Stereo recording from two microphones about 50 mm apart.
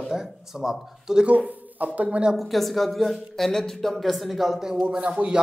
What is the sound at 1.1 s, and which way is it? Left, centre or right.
Speech, right.